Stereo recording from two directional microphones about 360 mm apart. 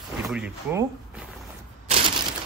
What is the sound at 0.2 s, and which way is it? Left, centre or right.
Speech, centre.